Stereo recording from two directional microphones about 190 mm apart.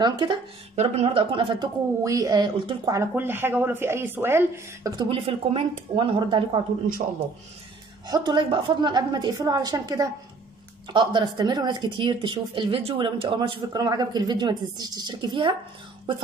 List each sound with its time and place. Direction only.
0.0 s speech: 25° right (ahead or behind)
8.1 s speech: 25° right (ahead or behind)